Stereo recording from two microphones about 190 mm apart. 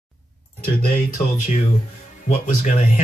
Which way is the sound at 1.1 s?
40° left (ahead or behind).